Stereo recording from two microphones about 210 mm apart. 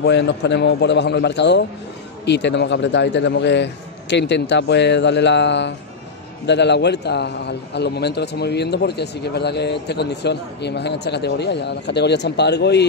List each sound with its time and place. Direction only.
0.0 s a man's voice: 55° left (ahead or behind)